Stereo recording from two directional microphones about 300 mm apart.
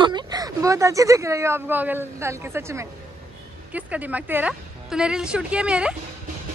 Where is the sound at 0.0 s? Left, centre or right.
Centre.